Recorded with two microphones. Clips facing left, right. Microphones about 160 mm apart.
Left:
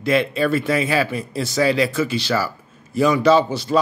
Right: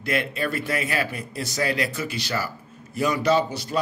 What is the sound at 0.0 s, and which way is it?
Speech, 90° left.